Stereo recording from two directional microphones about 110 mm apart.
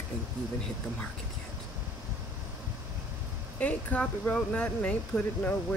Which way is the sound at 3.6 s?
10° left (ahead or behind).